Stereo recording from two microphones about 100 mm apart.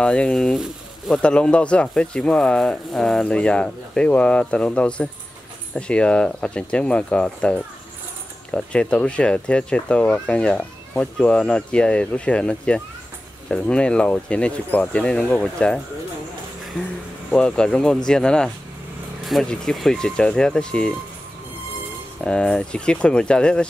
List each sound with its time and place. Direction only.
0.0 s speech: 10° left (ahead or behind)
1.2 s speech: 10° left (ahead or behind)
17.3 s speech: 10° left (ahead or behind)
22.2 s speech: 10° left (ahead or behind)